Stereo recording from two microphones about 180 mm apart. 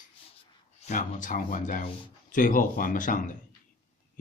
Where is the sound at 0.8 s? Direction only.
45° left (ahead or behind).